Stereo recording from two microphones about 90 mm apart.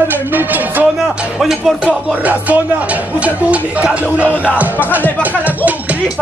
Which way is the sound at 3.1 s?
15° right (ahead or behind).